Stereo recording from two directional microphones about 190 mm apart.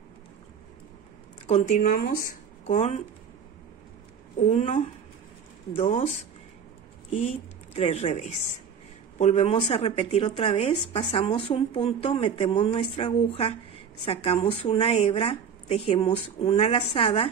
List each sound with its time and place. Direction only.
1.5 s speech: 40° left (ahead or behind)
2.6 s speech: 35° left (ahead or behind)
4.4 s speech: 35° left (ahead or behind)
7.7 s speech: 35° left (ahead or behind)